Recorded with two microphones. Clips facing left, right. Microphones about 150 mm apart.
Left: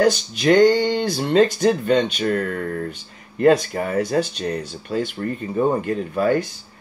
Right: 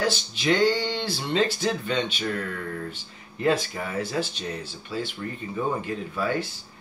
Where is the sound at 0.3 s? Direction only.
50° left (ahead or behind).